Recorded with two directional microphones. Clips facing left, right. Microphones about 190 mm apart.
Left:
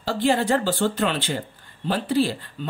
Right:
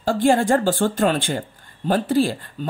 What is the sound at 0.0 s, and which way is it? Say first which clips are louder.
Speech: right 4 dB; 50° right (ahead or behind).